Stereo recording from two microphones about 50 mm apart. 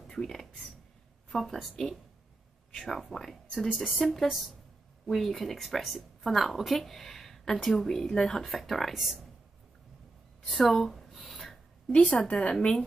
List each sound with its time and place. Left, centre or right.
0.1 s a woman's voice: centre
3.7 s a woman's voice: centre
8.5 s a woman's voice: centre
10.4 s a woman's voice: centre
11.2 s a sound: centre
11.9 s a woman's voice: centre